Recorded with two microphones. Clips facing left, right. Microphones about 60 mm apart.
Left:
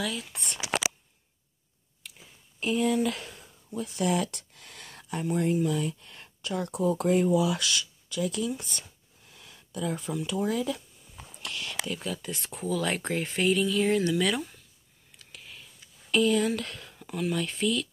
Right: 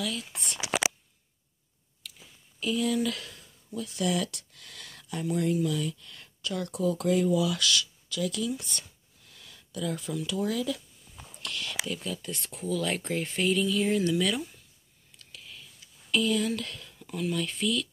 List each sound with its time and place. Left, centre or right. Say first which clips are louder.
0.0 s speech: left 1 dB; centre
2.6 s speech: left 2 dB; left
11.4 s speech: even; centre
16.1 s speech: left 3 dB; centre